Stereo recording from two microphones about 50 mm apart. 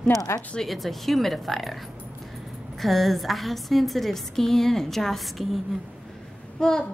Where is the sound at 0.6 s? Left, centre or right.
Centre.